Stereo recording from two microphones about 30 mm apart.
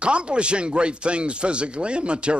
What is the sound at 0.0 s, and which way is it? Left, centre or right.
A man's voice, right.